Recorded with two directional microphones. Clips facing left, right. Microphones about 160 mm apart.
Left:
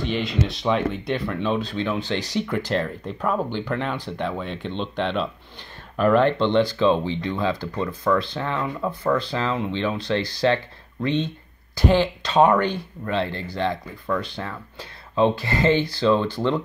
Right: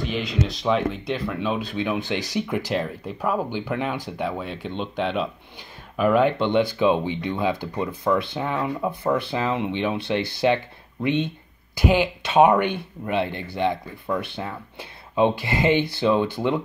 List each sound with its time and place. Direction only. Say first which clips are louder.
0.0 s speech: left 1 dB; centre (ahead or behind)